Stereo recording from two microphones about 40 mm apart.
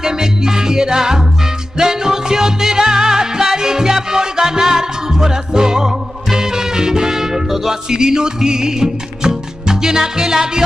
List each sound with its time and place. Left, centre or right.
0.0 s music: centre